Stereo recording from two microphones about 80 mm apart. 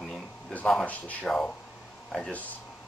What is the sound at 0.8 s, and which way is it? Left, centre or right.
Speech, centre.